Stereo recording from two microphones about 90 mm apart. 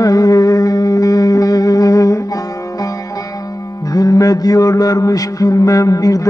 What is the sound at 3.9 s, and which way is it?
Mantra, 45° left (ahead or behind).